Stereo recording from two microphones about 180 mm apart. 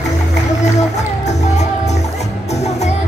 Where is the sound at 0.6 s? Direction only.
40° left (ahead or behind).